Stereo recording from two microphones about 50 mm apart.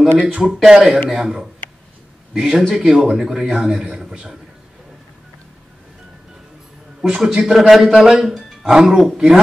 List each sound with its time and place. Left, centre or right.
0.2 s a man's voice: centre
7.0 s a man's voice: centre